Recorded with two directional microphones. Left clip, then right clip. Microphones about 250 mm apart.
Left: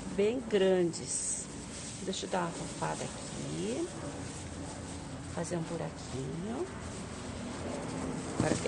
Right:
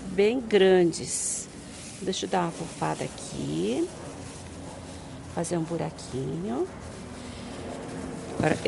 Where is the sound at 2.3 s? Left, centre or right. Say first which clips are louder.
Right 5 dB; right.